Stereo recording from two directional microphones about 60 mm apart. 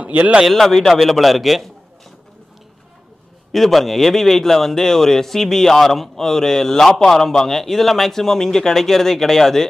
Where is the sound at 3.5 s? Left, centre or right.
Centre.